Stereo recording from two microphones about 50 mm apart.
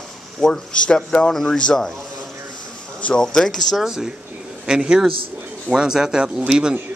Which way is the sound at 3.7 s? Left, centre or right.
Centre.